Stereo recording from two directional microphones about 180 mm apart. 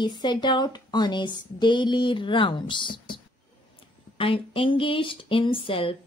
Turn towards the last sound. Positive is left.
turn(degrees=30)  # may be behind; listen again after turning